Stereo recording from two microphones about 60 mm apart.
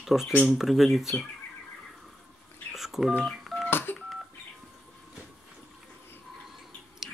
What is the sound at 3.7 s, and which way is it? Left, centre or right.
Telephone dialing, left.